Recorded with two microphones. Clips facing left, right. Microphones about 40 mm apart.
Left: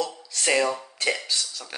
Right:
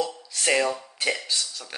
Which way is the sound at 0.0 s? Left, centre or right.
Centre.